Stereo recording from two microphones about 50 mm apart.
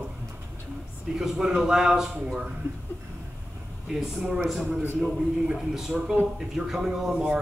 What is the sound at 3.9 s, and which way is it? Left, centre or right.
Speech, centre.